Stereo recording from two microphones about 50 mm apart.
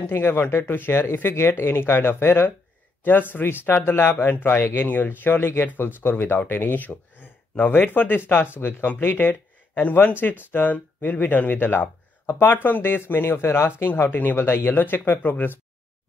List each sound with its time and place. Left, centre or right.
0.0 s speech: left
3.1 s speech: left
4.3 s speech: left
4.6 s speech: left
4.8 s speech: left
8.6 s speech: left
14.1 s speech: left